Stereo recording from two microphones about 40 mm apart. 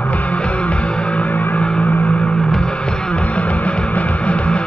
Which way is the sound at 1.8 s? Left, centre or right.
Left.